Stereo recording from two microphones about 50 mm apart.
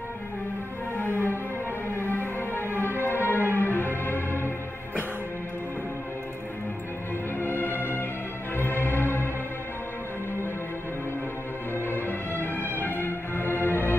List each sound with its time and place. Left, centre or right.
0.9 s music: left
7.3 s music: left
11.7 s music: left